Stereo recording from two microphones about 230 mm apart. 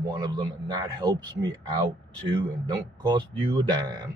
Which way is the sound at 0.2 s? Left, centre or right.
Centre.